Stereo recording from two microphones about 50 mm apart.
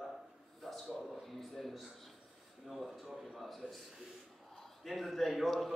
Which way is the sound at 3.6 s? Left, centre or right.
Centre.